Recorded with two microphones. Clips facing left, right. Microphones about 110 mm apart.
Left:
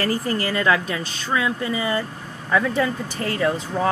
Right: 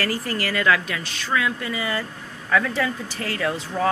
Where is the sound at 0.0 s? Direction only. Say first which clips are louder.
Left 3 dB; 25° left (ahead or behind).